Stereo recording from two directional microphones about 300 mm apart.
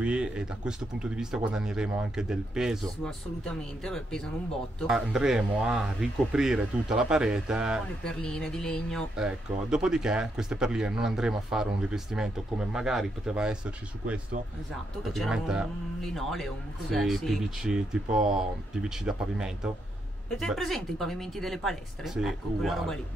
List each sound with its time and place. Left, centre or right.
0.0 s speech: centre
15.1 s speech: centre